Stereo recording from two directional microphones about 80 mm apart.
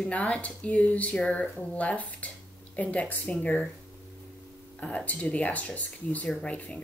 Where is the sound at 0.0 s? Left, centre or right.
Centre.